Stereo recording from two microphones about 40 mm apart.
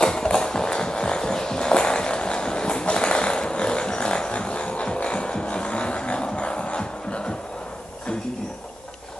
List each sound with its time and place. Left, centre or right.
0.0 s music: centre